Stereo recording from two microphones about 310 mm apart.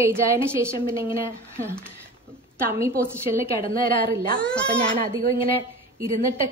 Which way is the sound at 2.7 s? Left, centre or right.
Centre.